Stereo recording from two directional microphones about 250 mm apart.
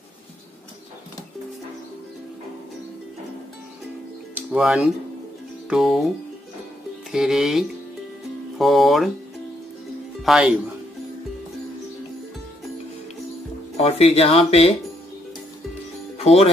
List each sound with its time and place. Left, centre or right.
4.4 s speech: centre
7.1 s speech: centre
10.2 s speech: centre
13.7 s speech: left
16.2 s speech: left